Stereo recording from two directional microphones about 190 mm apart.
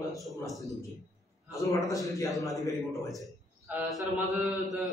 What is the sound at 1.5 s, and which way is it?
Speech, 15° left (ahead or behind).